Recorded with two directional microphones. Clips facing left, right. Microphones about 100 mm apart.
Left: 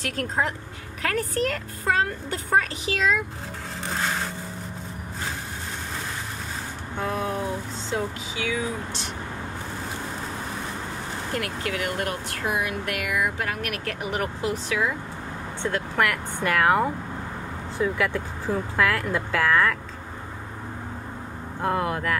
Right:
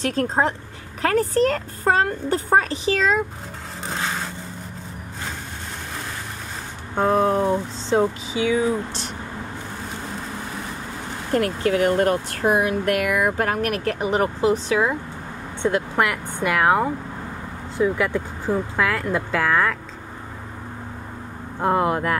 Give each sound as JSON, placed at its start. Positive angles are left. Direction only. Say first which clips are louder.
{"t": 0.0, "sound": "speech", "louder": "right 6 dB", "side_deg": -30}
{"t": 7.0, "sound": "speech", "louder": "right 9 dB", "side_deg": -40}
{"t": 7.9, "sound": "speech", "louder": "right 9 dB", "side_deg": -25}
{"t": 11.3, "sound": "speech", "louder": "right 10 dB", "side_deg": -35}
{"t": 15.6, "sound": "speech", "louder": "right 4 dB", "side_deg": -20}
{"t": 21.5, "sound": "speech", "louder": "right 5 dB", "side_deg": -25}